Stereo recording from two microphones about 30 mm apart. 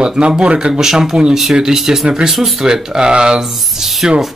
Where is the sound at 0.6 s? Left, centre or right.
Centre.